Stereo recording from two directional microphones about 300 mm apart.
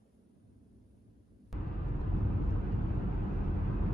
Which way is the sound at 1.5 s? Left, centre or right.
Centre.